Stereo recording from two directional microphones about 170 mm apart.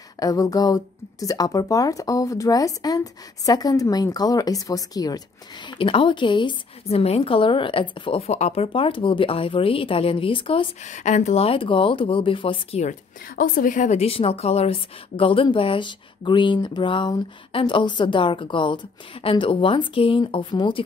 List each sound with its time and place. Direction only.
0.2 s speech: 20° left (ahead or behind)
10.9 s speech: 45° left (ahead or behind); by 12.8 s 30° left (ahead or behind)
13.4 s speech: 55° left (ahead or behind); by 20.8 s 25° left (ahead or behind)